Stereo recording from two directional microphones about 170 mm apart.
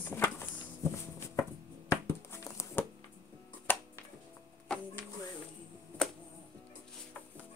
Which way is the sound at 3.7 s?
10° left (ahead or behind).